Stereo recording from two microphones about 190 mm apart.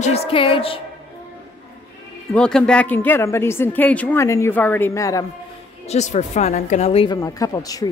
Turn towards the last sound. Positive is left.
turn(degrees=20)  # may be behind; listen again after turning